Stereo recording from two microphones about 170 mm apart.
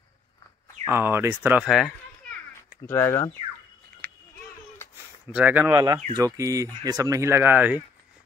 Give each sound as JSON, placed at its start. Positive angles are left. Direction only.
{"t": 0.8, "sound": "speech", "side_deg": -15}
{"t": 1.6, "sound": "a sound", "side_deg": 0}
{"t": 2.8, "sound": "speech", "side_deg": 15}
{"t": 4.0, "sound": "a sound", "side_deg": 10}
{"t": 5.3, "sound": "speech", "side_deg": -10}
{"t": 6.1, "sound": "speech", "side_deg": -20}